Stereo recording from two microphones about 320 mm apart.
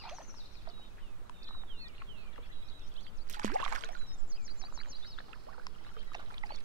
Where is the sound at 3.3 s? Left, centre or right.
Right.